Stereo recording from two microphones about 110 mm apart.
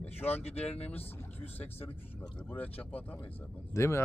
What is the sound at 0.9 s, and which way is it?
Speech, 20° left (ahead or behind).